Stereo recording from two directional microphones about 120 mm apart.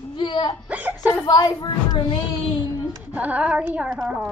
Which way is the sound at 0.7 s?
15° right (ahead or behind).